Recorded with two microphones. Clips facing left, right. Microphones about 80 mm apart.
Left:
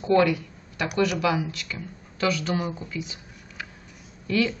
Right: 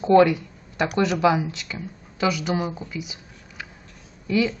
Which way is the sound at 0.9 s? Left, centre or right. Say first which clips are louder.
Right 3 dB; right.